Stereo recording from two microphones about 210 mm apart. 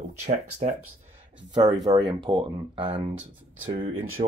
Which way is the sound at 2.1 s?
25° right (ahead or behind).